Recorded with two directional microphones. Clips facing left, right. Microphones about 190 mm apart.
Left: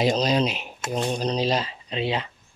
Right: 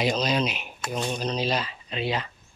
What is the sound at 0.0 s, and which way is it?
Speech, 30° left (ahead or behind).